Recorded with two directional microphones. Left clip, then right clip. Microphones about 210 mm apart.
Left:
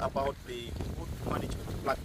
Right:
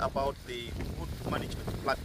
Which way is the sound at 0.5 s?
10° right (ahead or behind).